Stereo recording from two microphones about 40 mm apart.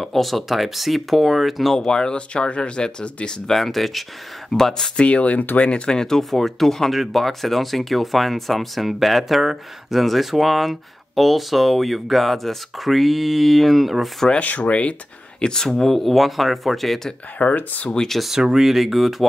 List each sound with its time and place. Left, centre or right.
0.0 s speech: centre
1.9 s speech: left
3.4 s speech: centre
4.9 s speech: left
5.6 s speech: left; by 14.1 s centre
14.4 s speech: left
15.4 s speech: centre
17.4 s speech: left
17.8 s speech: centre
18.4 s speech: centre